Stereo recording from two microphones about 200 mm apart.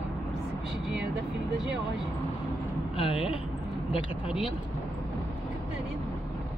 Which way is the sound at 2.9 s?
30° left (ahead or behind).